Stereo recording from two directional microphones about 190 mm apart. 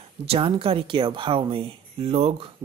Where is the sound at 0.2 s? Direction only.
30° right (ahead or behind).